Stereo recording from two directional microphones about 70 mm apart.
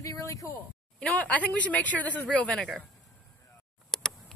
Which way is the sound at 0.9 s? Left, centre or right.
Centre.